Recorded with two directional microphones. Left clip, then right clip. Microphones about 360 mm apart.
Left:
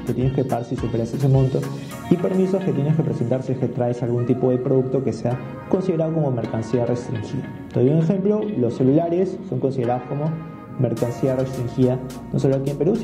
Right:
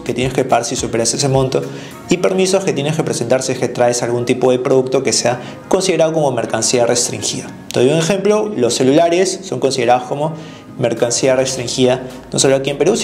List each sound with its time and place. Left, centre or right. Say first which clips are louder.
0.4 s speech: right 13 dB; centre
1.3 s speech: right 6 dB; centre
2.0 s speech: right 7 dB; centre